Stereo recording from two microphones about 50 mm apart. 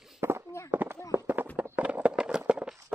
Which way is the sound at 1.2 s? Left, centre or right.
Right.